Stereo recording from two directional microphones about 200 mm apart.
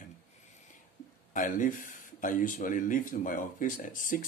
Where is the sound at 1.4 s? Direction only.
40° left (ahead or behind).